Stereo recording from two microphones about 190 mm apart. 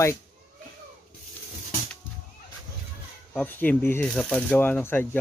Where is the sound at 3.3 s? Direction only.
10° left (ahead or behind).